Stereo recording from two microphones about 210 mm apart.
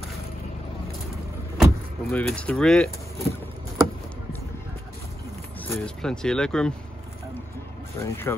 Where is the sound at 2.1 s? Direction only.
5° left (ahead or behind).